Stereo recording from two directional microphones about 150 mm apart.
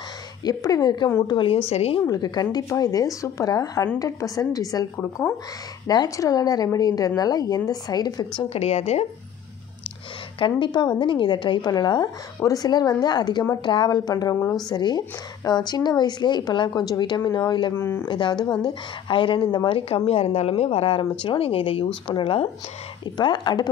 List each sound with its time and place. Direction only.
0.4 s a woman's voice: 25° left (ahead or behind)
1.7 s a woman's voice: 45° left (ahead or behind)
2.0 s a woman's voice: 25° left (ahead or behind)
8.4 s a woman's voice: 45° left (ahead or behind)
10.4 s a woman's voice: 35° left (ahead or behind)
17.7 s speech: 15° left (ahead or behind)
18.0 s a woman's voice: 30° left (ahead or behind)